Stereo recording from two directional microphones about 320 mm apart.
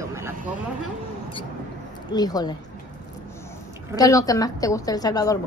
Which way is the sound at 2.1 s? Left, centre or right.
Centre.